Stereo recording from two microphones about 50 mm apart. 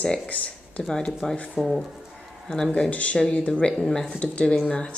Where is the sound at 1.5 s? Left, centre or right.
Centre.